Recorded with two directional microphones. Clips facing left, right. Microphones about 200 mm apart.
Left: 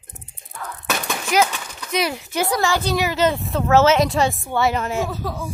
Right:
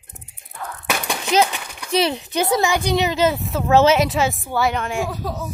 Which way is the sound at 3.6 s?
15° right (ahead or behind).